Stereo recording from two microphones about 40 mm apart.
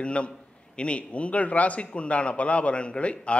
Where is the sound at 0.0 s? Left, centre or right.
Left.